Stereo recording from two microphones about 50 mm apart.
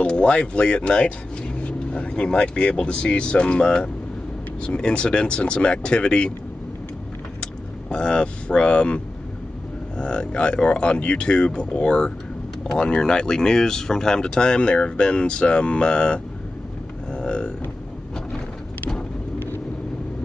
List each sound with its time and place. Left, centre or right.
0.0 s speech: left
7.9 s speech: centre
17.1 s a sound: centre